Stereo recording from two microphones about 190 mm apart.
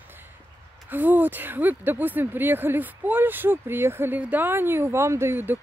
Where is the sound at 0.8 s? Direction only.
10° right (ahead or behind).